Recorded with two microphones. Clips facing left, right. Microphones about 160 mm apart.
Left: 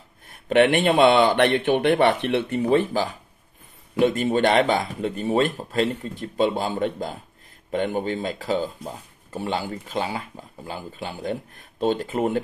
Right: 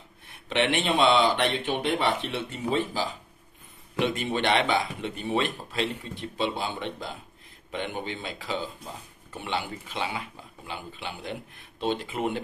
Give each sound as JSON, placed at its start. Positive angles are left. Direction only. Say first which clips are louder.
{"t": 0.3, "sound": "speech", "louder": "left 8 dB", "side_deg": 50}
{"t": 4.0, "sound": "speech", "louder": "left 7 dB", "side_deg": 45}